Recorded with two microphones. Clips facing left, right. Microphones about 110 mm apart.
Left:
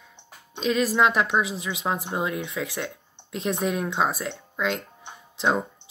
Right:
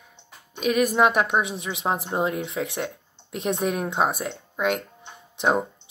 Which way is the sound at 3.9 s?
25° right (ahead or behind).